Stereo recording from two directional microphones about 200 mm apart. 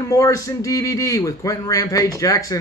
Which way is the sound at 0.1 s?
15° left (ahead or behind).